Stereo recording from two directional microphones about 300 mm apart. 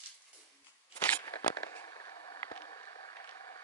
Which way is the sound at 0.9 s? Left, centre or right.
Centre.